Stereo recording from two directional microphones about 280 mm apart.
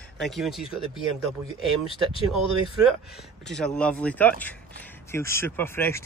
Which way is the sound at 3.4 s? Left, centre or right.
Centre.